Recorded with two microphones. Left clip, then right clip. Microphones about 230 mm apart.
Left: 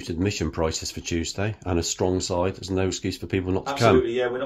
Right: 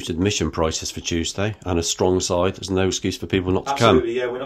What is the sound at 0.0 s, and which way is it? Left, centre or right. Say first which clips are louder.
Speech: right 5 dB; centre.